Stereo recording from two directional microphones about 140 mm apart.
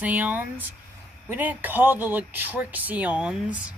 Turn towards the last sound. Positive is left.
turn(degrees=-10)  # may be behind; listen again after turning